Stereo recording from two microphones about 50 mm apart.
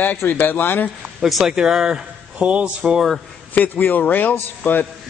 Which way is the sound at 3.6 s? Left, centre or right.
Left.